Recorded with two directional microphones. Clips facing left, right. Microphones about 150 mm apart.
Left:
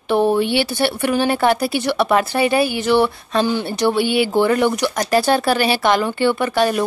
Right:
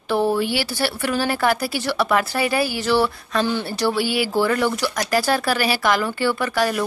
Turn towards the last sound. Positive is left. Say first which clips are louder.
# left 4 dB
turn(degrees=25)  # may be behind; listen again after turning